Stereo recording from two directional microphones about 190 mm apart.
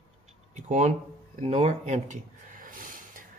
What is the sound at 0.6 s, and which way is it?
Speech, 40° right (ahead or behind).